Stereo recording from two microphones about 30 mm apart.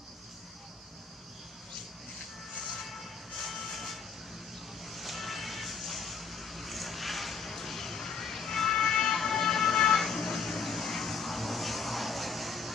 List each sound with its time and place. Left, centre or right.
2.7 s music: centre
4.8 s vehicle: centre